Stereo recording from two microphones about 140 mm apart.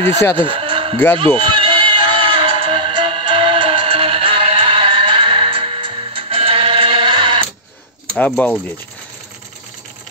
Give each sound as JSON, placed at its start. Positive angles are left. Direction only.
{"t": 0.4, "sound": "music", "side_deg": -40}
{"t": 8.4, "sound": "speech", "side_deg": 10}